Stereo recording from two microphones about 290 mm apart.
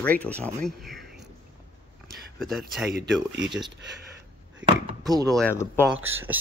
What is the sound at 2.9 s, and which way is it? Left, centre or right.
Speech, right.